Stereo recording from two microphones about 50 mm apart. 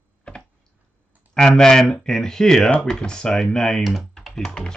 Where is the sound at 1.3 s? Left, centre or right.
Centre.